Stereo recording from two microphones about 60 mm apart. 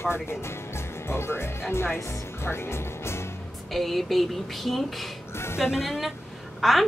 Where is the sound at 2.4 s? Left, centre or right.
Left.